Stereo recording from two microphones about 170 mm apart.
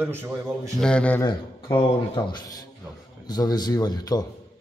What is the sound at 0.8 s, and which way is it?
Speech, 5° left (ahead or behind).